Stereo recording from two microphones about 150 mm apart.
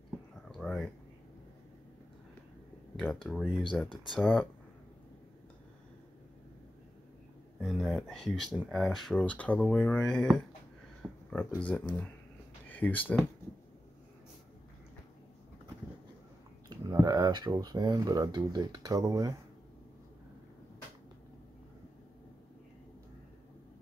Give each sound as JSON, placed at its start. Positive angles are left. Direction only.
{"t": 0.5, "sound": "a sound", "side_deg": 5}
{"t": 3.0, "sound": "speech", "side_deg": 5}
{"t": 7.6, "sound": "speech", "side_deg": 0}
{"t": 16.6, "sound": "speech", "side_deg": -25}